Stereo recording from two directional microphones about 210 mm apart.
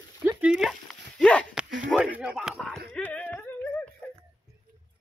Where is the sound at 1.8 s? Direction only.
5° right (ahead or behind).